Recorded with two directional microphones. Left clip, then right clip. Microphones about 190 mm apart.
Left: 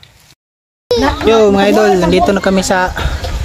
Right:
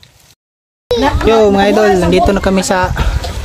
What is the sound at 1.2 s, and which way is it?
Speech, centre (ahead or behind).